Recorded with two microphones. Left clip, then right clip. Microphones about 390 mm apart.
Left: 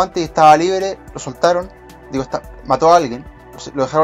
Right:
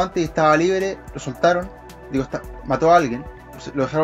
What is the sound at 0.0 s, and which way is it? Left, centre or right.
Speech, left.